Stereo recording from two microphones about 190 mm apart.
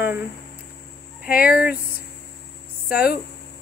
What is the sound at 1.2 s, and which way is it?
Speech, 50° left (ahead or behind).